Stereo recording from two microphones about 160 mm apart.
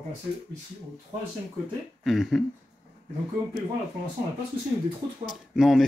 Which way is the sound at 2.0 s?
Centre (ahead or behind).